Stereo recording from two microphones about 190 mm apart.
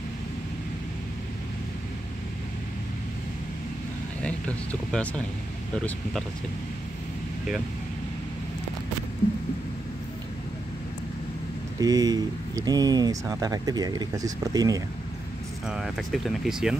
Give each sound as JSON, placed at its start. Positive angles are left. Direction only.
{"t": 4.2, "sound": "speech", "side_deg": 5}
{"t": 11.8, "sound": "speech", "side_deg": -20}
{"t": 15.6, "sound": "speech", "side_deg": 0}